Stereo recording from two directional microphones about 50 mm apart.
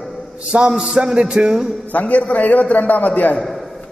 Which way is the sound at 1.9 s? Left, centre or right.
Left.